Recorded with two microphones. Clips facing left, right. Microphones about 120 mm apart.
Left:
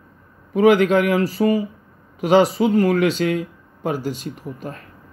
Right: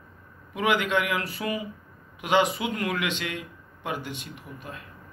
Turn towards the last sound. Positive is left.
turn(degrees=40)  # may be behind; listen again after turning